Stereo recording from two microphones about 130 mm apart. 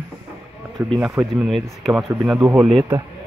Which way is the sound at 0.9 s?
5° right (ahead or behind).